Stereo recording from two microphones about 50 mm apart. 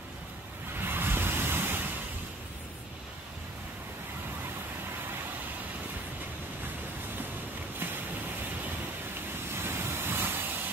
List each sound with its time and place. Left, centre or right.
0.7 s vehicle: right
9.6 s waves: right